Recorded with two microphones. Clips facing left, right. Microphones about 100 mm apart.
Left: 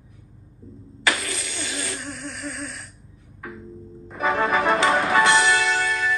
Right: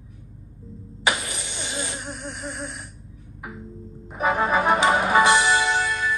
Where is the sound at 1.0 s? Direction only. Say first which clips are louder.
Even; 20° right (ahead or behind).